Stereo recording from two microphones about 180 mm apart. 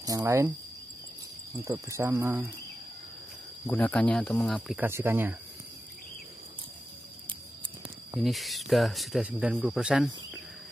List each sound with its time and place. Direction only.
0.0 s speech: 20° right (ahead or behind)
1.6 s speech: 15° right (ahead or behind)
3.6 s speech: 10° left (ahead or behind)
4.7 s speech: 15° right (ahead or behind)
8.1 s speech: centre (ahead or behind)